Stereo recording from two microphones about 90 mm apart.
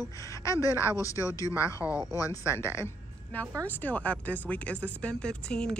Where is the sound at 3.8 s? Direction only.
15° left (ahead or behind).